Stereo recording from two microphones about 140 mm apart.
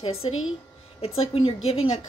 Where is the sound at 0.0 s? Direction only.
45° left (ahead or behind).